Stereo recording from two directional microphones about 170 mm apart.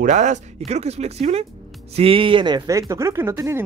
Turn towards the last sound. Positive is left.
turn(degrees=-15)  # may be behind; listen again after turning